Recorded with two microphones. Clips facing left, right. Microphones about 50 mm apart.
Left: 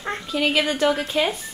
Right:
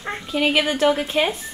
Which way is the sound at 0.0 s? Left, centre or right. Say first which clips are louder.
Left 1 dB; centre.